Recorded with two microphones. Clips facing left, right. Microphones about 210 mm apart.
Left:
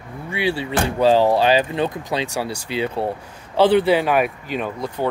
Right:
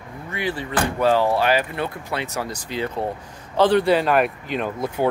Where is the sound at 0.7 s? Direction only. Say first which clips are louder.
Left 3 dB; 25° left (ahead or behind); by 4.7 s centre (ahead or behind).